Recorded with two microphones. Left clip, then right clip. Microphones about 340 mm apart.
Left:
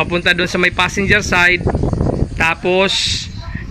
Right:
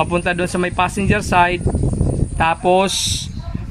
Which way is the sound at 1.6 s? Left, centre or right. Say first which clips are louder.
Left 4 dB; left.